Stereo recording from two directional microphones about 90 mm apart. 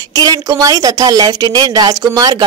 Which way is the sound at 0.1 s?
45° right (ahead or behind).